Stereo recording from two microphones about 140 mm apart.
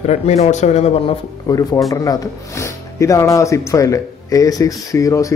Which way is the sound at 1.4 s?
25° left (ahead or behind).